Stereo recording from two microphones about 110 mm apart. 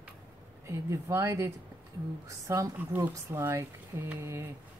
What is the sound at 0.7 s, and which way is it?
Speech, 25° right (ahead or behind).